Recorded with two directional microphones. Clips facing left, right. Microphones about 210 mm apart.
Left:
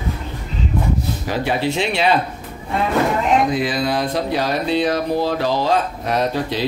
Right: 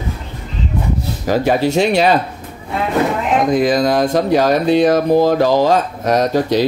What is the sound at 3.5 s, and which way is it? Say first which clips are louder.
Speech: right 6 dB; 45° right (ahead or behind).